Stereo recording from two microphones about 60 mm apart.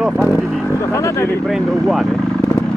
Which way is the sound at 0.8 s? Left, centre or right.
Left.